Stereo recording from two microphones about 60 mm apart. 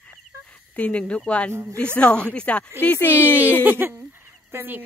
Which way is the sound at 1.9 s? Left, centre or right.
Centre.